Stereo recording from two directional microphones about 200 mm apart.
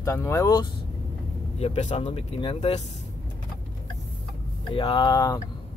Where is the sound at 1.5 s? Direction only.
35° left (ahead or behind).